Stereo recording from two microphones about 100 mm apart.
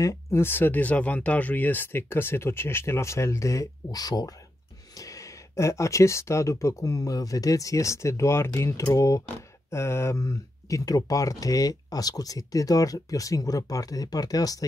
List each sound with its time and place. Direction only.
0.0 s speech: 25° left (ahead or behind)